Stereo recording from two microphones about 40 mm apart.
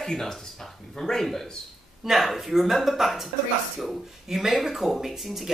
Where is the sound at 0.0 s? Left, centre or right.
Centre.